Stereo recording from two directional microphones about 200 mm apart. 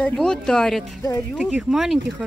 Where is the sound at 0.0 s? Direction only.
5° left (ahead or behind).